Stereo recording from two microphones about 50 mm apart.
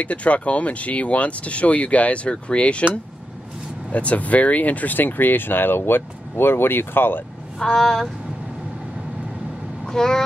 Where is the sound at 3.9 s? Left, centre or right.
Left.